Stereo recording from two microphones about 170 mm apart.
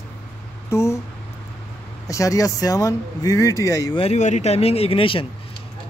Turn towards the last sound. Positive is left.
turn(degrees=30)  # may be behind; listen again after turning